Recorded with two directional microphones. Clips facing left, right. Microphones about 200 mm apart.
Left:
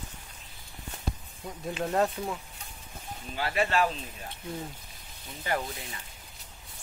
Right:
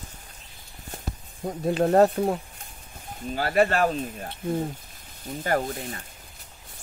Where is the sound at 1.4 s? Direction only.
45° right (ahead or behind).